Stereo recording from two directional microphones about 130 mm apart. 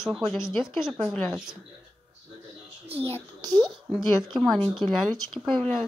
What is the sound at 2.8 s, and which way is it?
Speech, 50° right (ahead or behind).